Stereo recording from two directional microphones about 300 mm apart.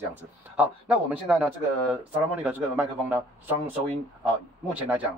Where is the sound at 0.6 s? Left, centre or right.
Centre.